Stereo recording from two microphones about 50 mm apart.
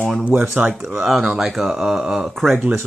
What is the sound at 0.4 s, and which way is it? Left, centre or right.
Speech, right.